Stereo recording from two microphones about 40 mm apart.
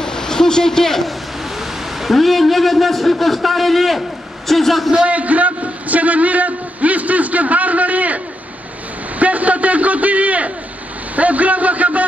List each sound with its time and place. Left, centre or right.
0.0 s a sound: centre
1.4 s a man's voice: centre
5.0 s a man's voice: right
9.2 s a man's voice: right